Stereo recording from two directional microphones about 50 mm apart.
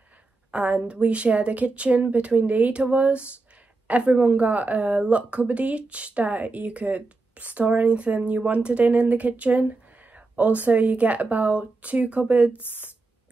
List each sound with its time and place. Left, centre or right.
0.5 s speech: right
12.5 s a woman's voice: left